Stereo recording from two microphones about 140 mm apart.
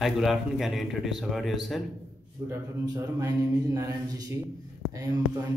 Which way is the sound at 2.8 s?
25° right (ahead or behind).